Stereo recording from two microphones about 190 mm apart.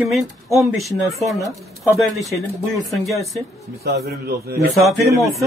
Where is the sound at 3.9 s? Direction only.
55° right (ahead or behind).